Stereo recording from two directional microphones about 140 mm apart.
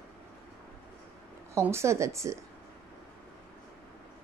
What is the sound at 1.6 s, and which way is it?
Speech, 20° right (ahead or behind).